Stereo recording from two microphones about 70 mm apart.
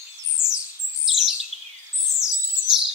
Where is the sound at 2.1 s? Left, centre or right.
Right.